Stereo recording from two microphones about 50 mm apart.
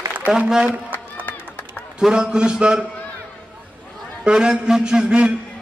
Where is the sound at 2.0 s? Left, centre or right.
Centre.